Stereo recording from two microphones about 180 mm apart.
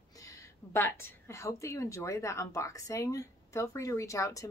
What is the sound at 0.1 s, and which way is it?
A woman's voice, 20° left (ahead or behind).